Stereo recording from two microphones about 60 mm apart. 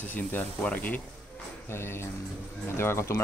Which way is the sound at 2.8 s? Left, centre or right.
Left.